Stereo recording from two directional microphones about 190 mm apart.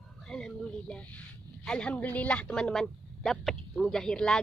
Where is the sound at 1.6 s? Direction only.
5° left (ahead or behind).